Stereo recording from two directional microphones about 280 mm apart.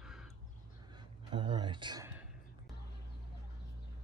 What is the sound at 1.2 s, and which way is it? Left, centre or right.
Speech, centre.